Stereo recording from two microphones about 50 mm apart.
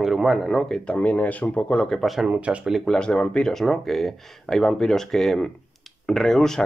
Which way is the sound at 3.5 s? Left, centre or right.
Centre.